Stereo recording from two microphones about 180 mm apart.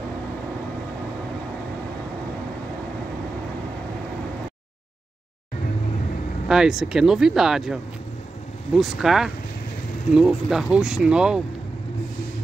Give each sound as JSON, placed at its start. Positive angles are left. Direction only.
{"t": 6.5, "sound": "speech", "side_deg": 0}